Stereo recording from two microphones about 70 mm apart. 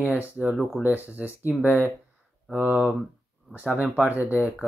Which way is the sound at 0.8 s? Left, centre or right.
Right.